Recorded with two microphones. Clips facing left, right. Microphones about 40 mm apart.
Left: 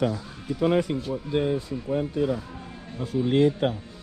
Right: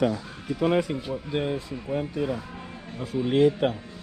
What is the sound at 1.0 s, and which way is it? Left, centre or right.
Speech, right.